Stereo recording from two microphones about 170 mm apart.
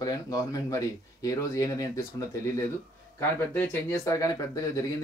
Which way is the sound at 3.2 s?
15° left (ahead or behind).